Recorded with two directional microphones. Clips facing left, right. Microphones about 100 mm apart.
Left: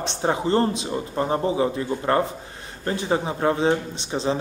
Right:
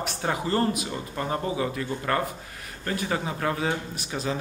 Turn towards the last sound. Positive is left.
turn(degrees=25)  # may be behind; listen again after turning